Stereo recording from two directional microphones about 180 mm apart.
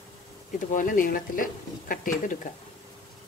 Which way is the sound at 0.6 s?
45° left (ahead or behind).